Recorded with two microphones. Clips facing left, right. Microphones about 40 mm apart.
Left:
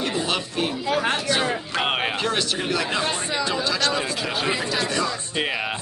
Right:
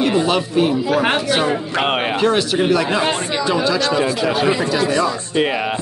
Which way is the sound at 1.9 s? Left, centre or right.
Centre.